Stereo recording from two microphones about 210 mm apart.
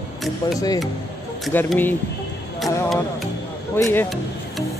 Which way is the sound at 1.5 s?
10° left (ahead or behind).